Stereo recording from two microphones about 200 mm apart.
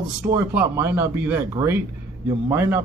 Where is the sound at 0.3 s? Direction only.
10° right (ahead or behind).